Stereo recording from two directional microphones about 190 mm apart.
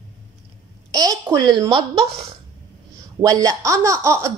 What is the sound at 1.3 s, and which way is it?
A woman's voice, 20° right (ahead or behind).